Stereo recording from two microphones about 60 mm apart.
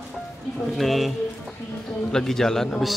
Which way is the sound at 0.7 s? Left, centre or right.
Centre.